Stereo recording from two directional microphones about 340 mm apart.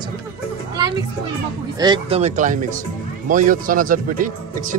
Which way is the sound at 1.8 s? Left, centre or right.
Centre.